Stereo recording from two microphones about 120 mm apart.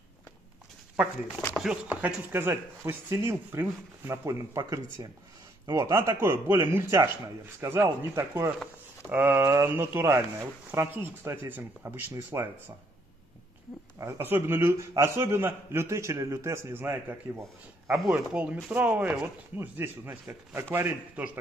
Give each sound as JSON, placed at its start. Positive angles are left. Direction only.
{"t": 1.3, "sound": "speech", "side_deg": 20}
{"t": 1.6, "sound": "a man's voice", "side_deg": -5}
{"t": 13.9, "sound": "a man's voice", "side_deg": -25}